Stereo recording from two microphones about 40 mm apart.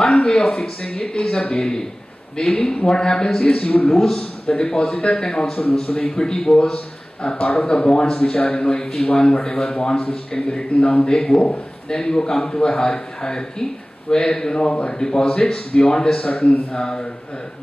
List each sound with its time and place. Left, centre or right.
0.4 s speech: centre
0.8 s speech: left
3.9 s speech: centre
4.2 s speech: left